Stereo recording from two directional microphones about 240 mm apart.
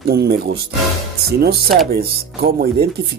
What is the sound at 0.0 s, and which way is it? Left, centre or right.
Speech, right.